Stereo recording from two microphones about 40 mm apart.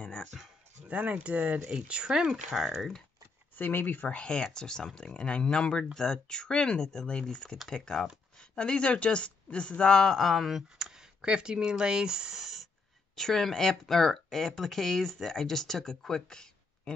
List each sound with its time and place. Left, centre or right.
0.8 s speech: right
1.7 s speech: right
2.5 s speech: centre
3.5 s speech: left
4.1 s speech: left
9.9 s speech: centre
12.4 s a sound: centre
13.1 s speech: centre